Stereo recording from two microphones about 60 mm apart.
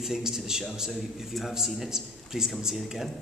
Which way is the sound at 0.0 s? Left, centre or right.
Centre.